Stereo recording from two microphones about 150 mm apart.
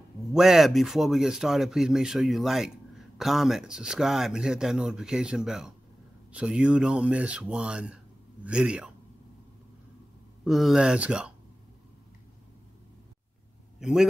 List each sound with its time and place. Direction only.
0.3 s speech: 5° right (ahead or behind)
10.4 s speech: centre (ahead or behind)
13.7 s a man's voice: 5° right (ahead or behind)